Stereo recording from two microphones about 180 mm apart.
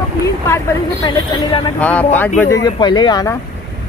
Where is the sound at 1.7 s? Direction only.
10° left (ahead or behind).